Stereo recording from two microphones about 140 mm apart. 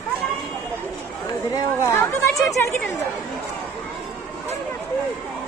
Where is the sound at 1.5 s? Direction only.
20° left (ahead or behind).